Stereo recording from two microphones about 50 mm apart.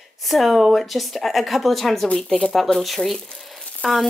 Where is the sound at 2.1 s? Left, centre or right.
Centre.